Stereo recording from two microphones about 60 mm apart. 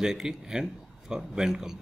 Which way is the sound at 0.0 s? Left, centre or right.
Centre.